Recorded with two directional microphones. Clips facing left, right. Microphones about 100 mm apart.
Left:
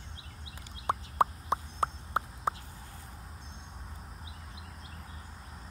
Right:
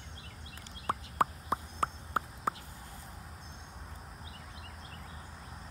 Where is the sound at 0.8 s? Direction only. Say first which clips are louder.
Left 3 dB; 25° left (ahead or behind).